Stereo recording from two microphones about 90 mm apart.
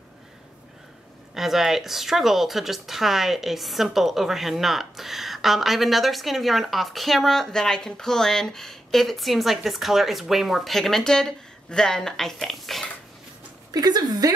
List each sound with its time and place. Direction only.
1.3 s speech: 5° right (ahead or behind)
13.7 s a woman's voice: 45° right (ahead or behind)